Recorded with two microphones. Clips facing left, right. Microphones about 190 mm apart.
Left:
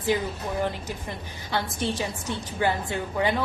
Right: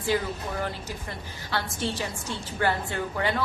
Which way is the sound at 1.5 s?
15° left (ahead or behind).